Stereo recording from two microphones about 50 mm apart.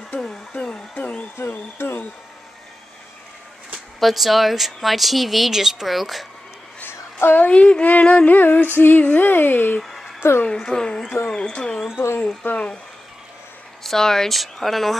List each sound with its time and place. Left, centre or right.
0.2 s hair dryer: centre
0.9 s music: left
1.4 s music: left
4.0 s speech: centre
6.9 s a sound: left
7.3 s speech: left
8.4 s music: left
9.8 s music: centre
10.4 s speech: centre
12.4 s music: left
13.8 s speech: centre